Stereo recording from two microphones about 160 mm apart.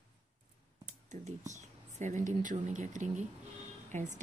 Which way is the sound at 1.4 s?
50° right (ahead or behind).